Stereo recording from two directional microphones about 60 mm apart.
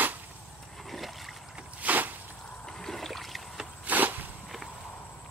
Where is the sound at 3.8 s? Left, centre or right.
Right.